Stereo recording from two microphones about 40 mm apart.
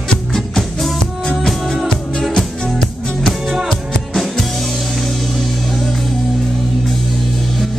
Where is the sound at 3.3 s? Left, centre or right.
Centre.